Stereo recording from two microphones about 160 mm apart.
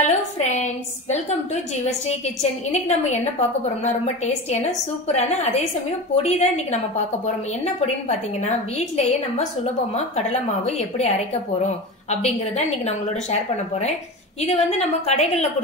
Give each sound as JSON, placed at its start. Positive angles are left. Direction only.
{"t": 0.0, "sound": "a sound", "side_deg": 45}
{"t": 1.1, "sound": "a woman's voice", "side_deg": 45}
{"t": 7.8, "sound": "a woman's voice", "side_deg": 45}